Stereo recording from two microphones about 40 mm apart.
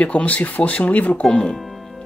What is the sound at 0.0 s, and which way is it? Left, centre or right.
Speech, left.